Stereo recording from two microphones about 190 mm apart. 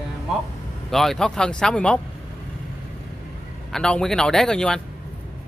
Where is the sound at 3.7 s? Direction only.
5° left (ahead or behind).